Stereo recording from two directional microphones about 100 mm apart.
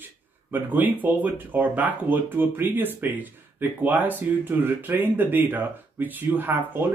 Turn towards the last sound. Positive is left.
turn(degrees=-20)  # may be behind; listen again after turning